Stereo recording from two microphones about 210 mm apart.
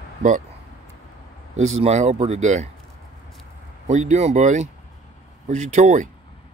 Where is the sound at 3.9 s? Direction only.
30° right (ahead or behind).